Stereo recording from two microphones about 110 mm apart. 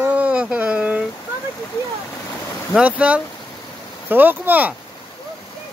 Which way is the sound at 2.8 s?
10° right (ahead or behind).